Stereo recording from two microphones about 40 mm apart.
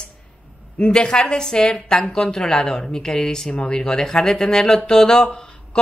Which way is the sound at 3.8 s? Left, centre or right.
Centre.